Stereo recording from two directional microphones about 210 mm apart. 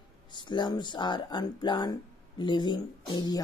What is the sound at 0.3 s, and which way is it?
Speech, 20° left (ahead or behind).